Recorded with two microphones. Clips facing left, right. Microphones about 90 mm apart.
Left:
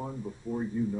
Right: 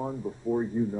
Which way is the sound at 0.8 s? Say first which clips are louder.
Right 3 dB; 30° right (ahead or behind).